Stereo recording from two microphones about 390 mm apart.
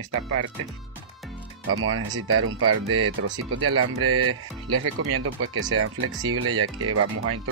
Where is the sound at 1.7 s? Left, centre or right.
Right.